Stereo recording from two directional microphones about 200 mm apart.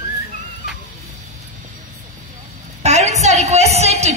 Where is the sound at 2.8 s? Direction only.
35° right (ahead or behind).